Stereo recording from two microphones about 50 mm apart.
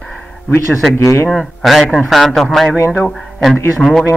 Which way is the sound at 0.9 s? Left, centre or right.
Left.